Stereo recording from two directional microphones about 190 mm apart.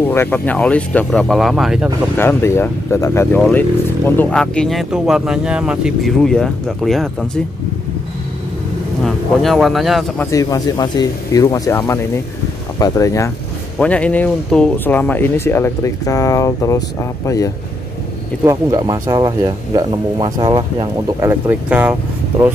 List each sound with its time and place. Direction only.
0.1 s speech: 10° left (ahead or behind)
2.1 s speech: 10° left (ahead or behind)
9.0 s speech: centre (ahead or behind)
10.3 s speech: 20° left (ahead or behind)
18.4 s speech: 15° right (ahead or behind)